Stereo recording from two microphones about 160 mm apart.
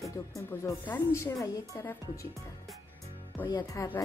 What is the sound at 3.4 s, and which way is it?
Speech, 25° left (ahead or behind).